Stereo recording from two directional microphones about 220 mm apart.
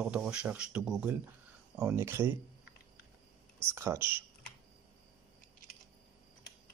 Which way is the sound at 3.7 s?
10° right (ahead or behind).